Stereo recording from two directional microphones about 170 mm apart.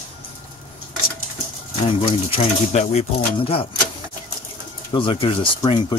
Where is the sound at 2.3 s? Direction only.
40° left (ahead or behind).